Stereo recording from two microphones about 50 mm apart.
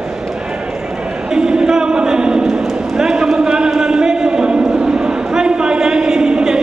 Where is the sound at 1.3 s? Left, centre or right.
Centre.